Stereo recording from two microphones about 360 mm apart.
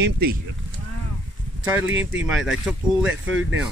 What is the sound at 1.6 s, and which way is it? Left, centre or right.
Speech, centre.